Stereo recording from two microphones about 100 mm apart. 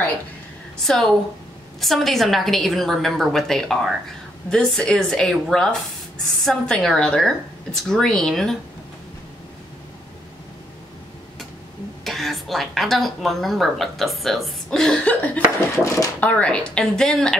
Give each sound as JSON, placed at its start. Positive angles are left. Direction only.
{"t": 0.8, "sound": "a woman's voice", "side_deg": 5}
{"t": 12.0, "sound": "a woman's voice", "side_deg": 0}
{"t": 15.7, "sound": "speech", "side_deg": 30}
{"t": 16.2, "sound": "speech", "side_deg": 15}